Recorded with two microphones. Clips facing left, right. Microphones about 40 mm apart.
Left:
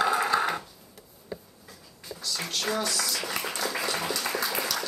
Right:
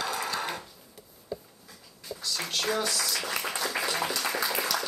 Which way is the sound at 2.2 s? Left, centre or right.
Centre.